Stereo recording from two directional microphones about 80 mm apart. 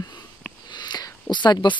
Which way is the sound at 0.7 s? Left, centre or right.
Left.